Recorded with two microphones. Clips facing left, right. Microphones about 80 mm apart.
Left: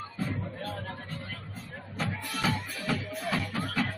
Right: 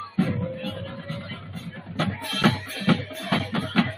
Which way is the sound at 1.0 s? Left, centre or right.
Right.